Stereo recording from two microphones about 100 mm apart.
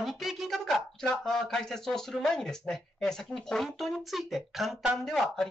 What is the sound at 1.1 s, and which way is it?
Speech, 5° left (ahead or behind).